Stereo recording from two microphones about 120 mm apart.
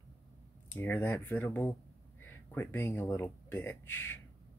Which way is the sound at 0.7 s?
15° left (ahead or behind).